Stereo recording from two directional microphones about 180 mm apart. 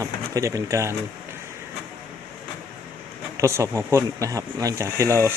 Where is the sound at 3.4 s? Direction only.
15° right (ahead or behind).